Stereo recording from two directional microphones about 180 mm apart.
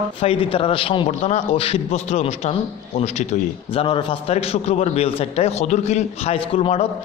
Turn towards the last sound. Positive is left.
turn(degrees=30)  # may be behind; listen again after turning